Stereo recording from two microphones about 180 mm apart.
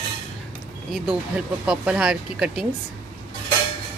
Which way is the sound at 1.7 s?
5° right (ahead or behind).